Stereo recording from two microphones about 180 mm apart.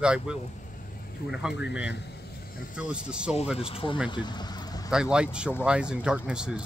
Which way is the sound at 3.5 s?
30° left (ahead or behind).